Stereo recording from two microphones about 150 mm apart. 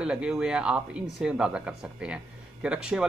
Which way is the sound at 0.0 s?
5° right (ahead or behind).